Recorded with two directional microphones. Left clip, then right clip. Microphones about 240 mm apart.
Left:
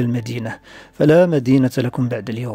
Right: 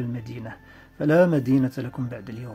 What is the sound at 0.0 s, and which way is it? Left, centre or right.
Speech, left.